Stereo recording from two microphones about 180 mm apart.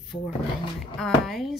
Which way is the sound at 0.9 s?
Centre (ahead or behind).